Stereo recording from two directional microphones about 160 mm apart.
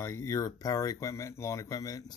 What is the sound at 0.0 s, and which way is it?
Speech, 15° left (ahead or behind).